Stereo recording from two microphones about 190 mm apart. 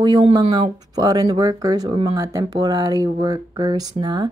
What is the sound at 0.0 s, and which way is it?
Speech, 20° right (ahead or behind).